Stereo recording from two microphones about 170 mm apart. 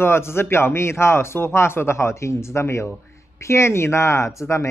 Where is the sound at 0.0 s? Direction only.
15° left (ahead or behind).